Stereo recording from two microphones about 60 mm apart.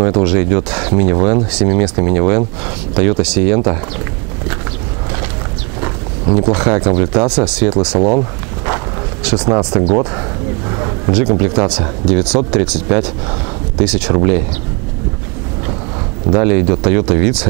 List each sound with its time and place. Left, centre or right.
0.1 s speech: centre
5.8 s speech: centre
8.6 s a sound: centre
11.1 s speech: centre
16.3 s speech: centre